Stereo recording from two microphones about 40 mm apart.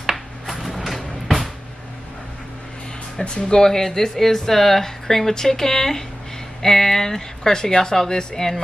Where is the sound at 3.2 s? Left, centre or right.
Left.